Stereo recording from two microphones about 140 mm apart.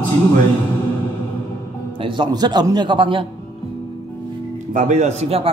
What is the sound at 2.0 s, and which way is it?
Speech, 35° right (ahead or behind).